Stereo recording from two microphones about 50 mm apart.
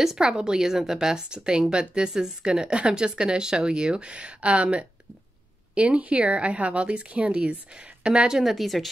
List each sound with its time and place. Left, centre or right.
0.0 s a woman's voice: centre
8.4 s speech: centre